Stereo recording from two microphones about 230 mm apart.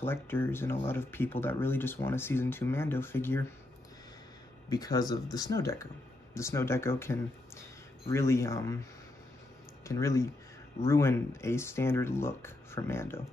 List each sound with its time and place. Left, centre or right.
0.0 s speech: centre
4.6 s speech: centre
9.8 s speech: centre